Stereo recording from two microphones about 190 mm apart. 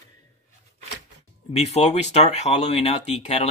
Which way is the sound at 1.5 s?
35° left (ahead or behind).